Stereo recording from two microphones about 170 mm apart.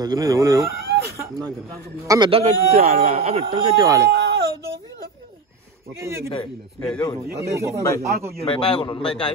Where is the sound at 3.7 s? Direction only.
20° right (ahead or behind).